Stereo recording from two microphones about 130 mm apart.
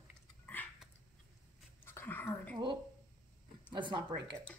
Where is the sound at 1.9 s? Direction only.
15° left (ahead or behind).